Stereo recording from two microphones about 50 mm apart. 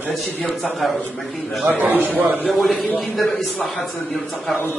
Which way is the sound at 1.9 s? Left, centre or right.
Left.